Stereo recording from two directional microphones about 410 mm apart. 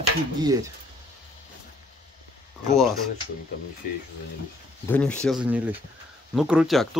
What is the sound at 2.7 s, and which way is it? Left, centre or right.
Speech, centre.